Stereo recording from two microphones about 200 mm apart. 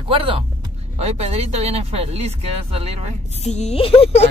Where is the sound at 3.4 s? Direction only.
35° left (ahead or behind).